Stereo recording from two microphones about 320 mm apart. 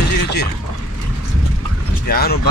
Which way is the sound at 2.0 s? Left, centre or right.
Left.